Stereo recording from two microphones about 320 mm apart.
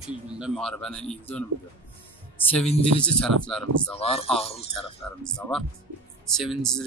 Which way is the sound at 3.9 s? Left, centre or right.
Centre.